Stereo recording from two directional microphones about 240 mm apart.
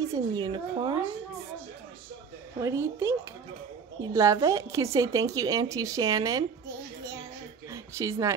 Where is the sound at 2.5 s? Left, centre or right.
Centre.